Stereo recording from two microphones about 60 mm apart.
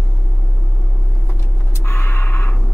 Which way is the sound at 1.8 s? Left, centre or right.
Left.